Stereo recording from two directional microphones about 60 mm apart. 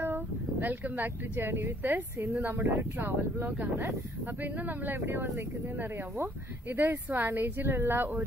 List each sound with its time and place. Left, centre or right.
0.0 s speech: right